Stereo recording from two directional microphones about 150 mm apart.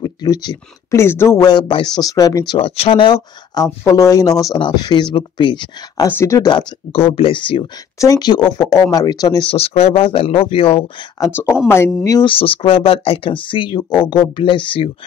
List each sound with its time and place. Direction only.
0.0 s speech: 30° left (ahead or behind)
0.9 s speech: 15° left (ahead or behind)
2.5 s speech: 40° left (ahead or behind)
6.1 s speech: 20° left (ahead or behind)
6.9 s speech: 40° left (ahead or behind)
9.5 s speech: 40° left (ahead or behind)
11.1 s speech: 20° left (ahead or behind)
12.3 s speech: 35° left (ahead or behind)